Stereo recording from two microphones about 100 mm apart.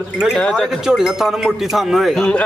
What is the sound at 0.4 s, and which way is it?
Speech, 10° left (ahead or behind).